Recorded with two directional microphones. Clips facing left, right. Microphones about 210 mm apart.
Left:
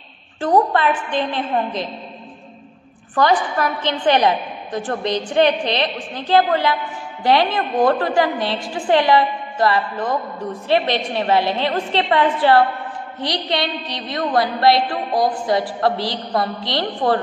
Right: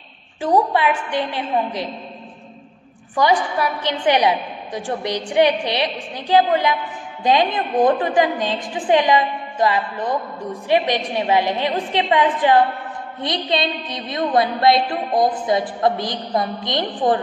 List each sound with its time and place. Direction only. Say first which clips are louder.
0.4 s a woman's voice: left 1 dB; 10° right (ahead or behind)
3.2 s a woman's voice: left 1 dB; 10° right (ahead or behind)